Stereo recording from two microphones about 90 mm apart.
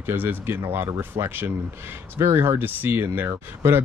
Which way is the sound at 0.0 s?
20° right (ahead or behind).